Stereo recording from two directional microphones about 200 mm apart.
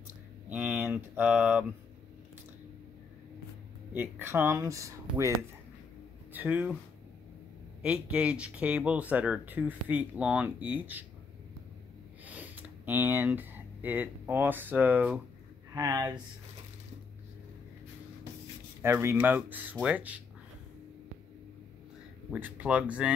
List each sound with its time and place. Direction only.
0.5 s speech: 5° right (ahead or behind)
3.9 s speech: 10° right (ahead or behind)
6.3 s speech: 10° right (ahead or behind)
7.8 s speech: 5° right (ahead or behind)
12.3 s speech: 10° right (ahead or behind)
15.7 s speech: 20° right (ahead or behind)
18.8 s speech: 10° right (ahead or behind)
22.3 s speech: 5° right (ahead or behind)